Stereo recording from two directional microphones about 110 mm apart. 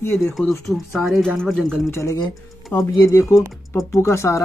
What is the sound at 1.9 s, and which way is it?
Speech, 25° left (ahead or behind).